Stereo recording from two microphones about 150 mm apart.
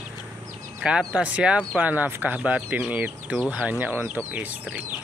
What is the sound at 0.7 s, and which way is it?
Speech, 5° right (ahead or behind).